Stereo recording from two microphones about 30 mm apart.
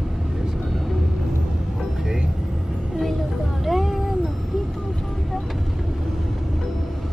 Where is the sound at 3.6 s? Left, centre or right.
Centre.